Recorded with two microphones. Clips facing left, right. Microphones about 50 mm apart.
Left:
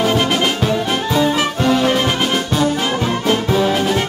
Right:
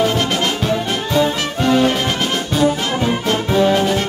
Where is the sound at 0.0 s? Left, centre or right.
Centre.